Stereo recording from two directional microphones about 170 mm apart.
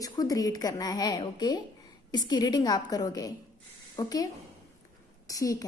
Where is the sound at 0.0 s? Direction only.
20° left (ahead or behind).